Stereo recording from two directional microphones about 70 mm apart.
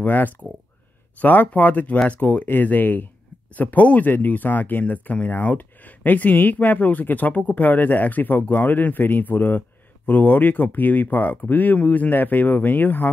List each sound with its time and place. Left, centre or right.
0.0 s speech: left